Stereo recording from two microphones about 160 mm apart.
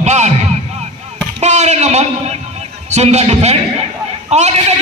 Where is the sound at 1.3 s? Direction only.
45° right (ahead or behind).